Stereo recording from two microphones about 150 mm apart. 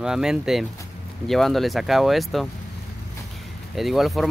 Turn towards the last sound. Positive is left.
turn(degrees=0)  # may be behind; listen again after turning